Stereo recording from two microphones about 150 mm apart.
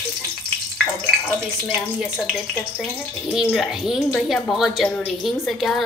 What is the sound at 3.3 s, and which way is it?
A woman's voice, centre (ahead or behind).